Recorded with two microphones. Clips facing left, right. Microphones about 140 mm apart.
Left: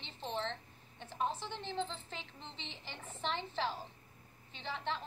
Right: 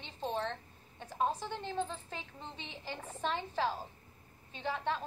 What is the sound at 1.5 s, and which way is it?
Speech, 10° right (ahead or behind).